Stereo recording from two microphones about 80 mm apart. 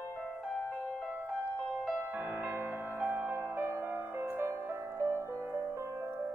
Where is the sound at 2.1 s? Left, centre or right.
Right.